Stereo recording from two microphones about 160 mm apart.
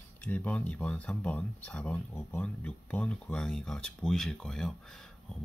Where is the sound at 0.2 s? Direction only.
10° left (ahead or behind).